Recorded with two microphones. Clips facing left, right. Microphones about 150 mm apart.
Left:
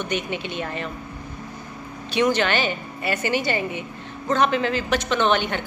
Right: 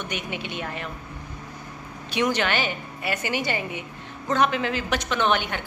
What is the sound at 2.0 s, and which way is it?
A woman's voice, 10° right (ahead or behind).